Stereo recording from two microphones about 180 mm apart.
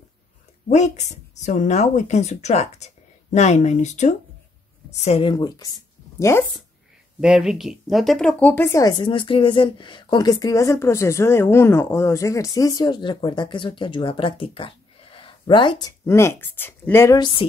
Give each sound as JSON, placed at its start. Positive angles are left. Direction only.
{"t": 0.7, "sound": "speech", "side_deg": 40}
{"t": 5.3, "sound": "speech", "side_deg": 20}
{"t": 7.2, "sound": "speech", "side_deg": -5}
{"t": 16.1, "sound": "speech", "side_deg": 15}